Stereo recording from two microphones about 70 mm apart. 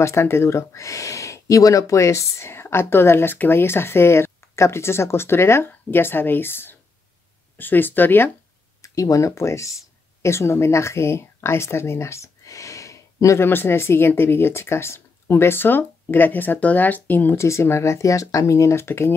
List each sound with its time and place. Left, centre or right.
0.0 s speech: left
8.8 s speech: left
13.4 s speech: left
17.4 s speech: left